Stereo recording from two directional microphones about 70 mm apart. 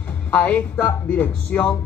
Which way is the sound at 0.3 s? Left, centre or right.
Left.